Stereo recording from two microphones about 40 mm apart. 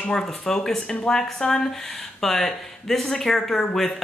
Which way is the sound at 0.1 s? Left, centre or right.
Centre.